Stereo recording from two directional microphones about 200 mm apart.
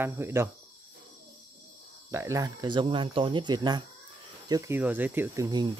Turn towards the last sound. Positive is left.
turn(degrees=-20)  # may be behind; listen again after turning